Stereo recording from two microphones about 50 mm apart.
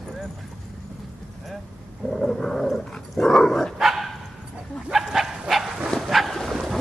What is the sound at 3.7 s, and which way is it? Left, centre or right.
Dog, centre.